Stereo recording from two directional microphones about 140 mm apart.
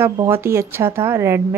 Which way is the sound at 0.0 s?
15° right (ahead or behind).